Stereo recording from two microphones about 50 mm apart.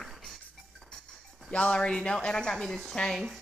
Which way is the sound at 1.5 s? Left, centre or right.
Left.